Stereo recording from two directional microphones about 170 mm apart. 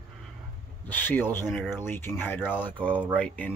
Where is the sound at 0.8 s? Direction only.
10° left (ahead or behind).